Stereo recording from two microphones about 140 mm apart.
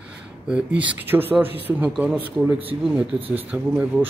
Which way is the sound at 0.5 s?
5° right (ahead or behind).